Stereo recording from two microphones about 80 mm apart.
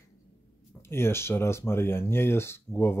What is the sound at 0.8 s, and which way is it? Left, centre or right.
Speech, left.